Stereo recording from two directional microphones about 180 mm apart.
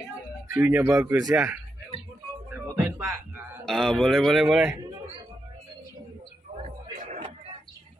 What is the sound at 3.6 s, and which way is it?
Speech, centre (ahead or behind).